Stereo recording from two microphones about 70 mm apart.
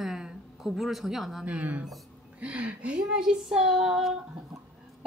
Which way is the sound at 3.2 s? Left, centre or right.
Centre.